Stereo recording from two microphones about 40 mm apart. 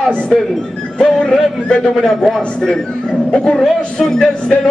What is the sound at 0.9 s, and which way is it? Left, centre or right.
Speech, left.